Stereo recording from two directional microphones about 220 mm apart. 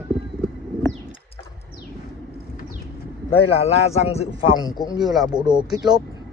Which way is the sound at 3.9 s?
30° left (ahead or behind).